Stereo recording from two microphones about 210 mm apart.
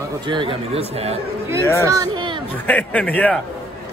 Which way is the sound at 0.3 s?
25° right (ahead or behind).